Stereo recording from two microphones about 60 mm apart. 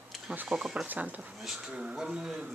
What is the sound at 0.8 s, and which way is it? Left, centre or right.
Speech, right.